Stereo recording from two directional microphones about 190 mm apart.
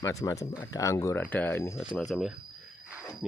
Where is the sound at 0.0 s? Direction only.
15° left (ahead or behind).